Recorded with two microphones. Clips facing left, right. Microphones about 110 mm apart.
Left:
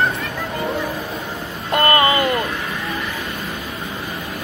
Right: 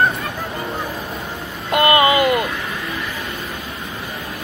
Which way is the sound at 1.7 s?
15° right (ahead or behind).